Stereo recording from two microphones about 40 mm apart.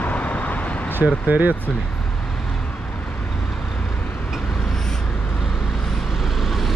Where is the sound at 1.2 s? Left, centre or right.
Right.